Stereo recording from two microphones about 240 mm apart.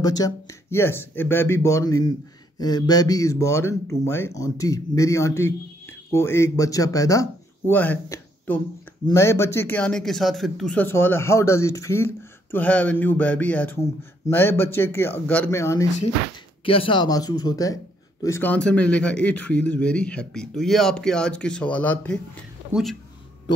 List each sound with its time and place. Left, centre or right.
0.0 s a man's voice: centre